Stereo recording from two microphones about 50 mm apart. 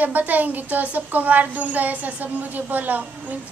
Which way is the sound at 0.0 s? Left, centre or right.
Right.